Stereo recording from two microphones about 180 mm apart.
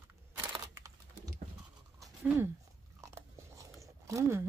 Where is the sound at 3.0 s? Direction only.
15° right (ahead or behind).